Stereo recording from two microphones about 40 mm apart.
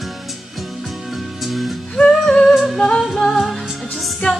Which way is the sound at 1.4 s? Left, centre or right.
Centre.